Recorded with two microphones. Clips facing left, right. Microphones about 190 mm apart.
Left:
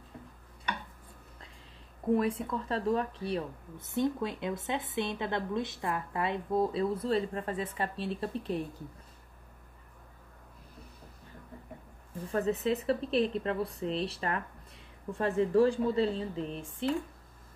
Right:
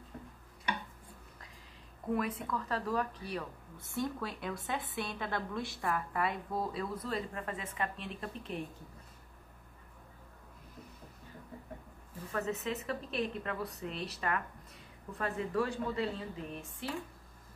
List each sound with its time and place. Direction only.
2.1 s a woman's voice: 30° left (ahead or behind)
12.3 s speech: 35° left (ahead or behind)